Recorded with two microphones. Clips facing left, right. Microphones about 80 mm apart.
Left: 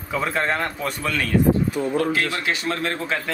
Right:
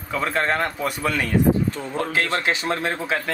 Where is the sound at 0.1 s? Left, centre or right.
Centre.